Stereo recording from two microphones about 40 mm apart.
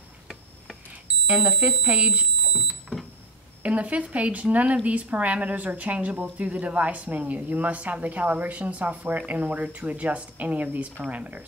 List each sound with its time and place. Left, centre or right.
1.0 s speech: right
3.6 s a woman's voice: right